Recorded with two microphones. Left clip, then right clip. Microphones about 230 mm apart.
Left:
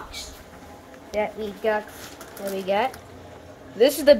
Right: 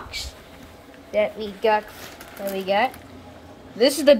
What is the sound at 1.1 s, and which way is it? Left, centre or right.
A woman's voice, centre.